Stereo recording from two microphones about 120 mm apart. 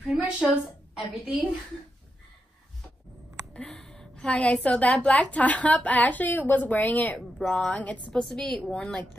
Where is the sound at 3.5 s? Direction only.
5° left (ahead or behind).